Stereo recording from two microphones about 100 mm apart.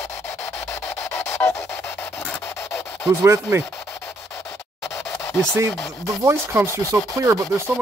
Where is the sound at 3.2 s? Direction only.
25° right (ahead or behind).